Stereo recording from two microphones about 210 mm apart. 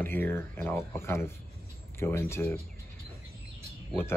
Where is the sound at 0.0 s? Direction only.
10° left (ahead or behind).